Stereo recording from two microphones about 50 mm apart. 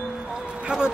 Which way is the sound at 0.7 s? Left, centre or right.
Centre.